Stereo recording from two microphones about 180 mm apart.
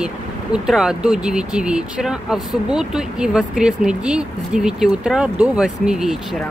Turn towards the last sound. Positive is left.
turn(degrees=0)  # may be behind; listen again after turning